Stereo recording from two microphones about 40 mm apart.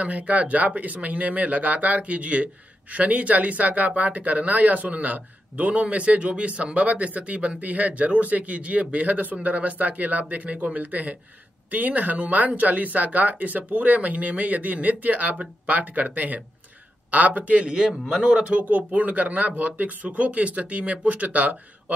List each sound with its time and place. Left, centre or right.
0.0 s speech: right